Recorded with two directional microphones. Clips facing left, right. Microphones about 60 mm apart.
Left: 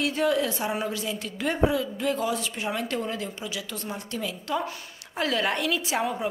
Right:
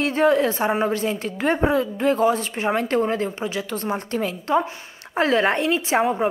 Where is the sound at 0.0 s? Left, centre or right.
Right.